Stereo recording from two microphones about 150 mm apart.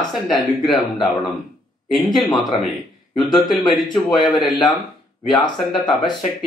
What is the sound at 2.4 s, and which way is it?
Speech, centre (ahead or behind).